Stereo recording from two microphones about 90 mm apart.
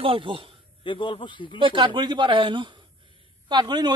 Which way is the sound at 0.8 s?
65° left (ahead or behind).